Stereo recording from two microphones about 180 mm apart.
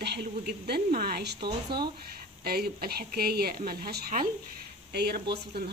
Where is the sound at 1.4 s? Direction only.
25° right (ahead or behind).